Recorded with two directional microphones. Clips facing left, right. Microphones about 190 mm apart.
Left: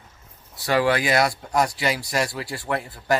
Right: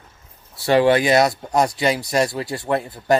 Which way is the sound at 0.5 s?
25° right (ahead or behind).